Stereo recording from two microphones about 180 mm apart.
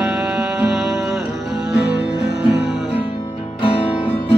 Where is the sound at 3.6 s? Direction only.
30° left (ahead or behind).